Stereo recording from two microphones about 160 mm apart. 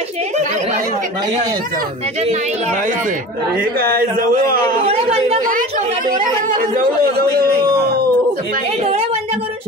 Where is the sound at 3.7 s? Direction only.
70° right (ahead or behind).